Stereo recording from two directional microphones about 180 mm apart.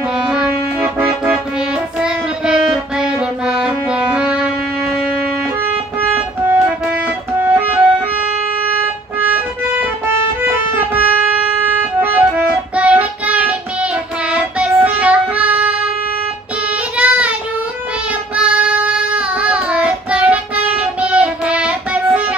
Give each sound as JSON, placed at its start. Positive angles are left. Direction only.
{"t": 0.3, "sound": "music", "side_deg": -5}
{"t": 6.1, "sound": "music", "side_deg": -10}
{"t": 9.2, "sound": "music", "side_deg": -10}
{"t": 14.3, "sound": "child singing", "side_deg": -5}
{"t": 16.9, "sound": "child singing", "side_deg": -5}
{"t": 18.3, "sound": "child singing", "side_deg": -5}